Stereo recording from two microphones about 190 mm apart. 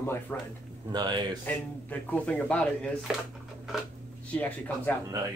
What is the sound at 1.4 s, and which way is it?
Speech, 10° left (ahead or behind).